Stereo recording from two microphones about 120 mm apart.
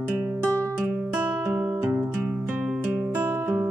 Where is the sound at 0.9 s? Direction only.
15° right (ahead or behind).